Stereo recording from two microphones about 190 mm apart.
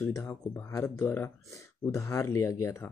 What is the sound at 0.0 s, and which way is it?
Speech, 10° left (ahead or behind).